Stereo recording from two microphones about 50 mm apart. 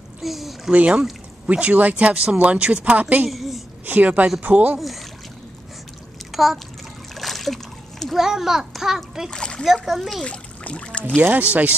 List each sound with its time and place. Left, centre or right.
0.2 s speech: centre
0.7 s a woman's voice: right
3.3 s a woman's voice: centre
3.8 s speech: right
4.7 s speech: centre
6.3 s a child's voice: centre
7.2 s splash: centre
8.2 s a child's voice: centre
9.3 s a child's voice: centre
11.1 s speech: right